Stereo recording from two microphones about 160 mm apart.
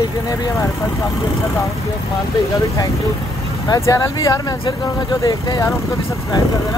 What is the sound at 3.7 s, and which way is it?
Speech, 20° left (ahead or behind).